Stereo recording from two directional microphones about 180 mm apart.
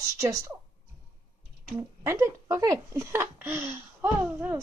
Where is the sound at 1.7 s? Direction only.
15° right (ahead or behind).